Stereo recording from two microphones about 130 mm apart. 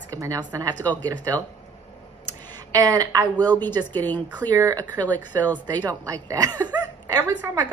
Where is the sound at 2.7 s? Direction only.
25° right (ahead or behind).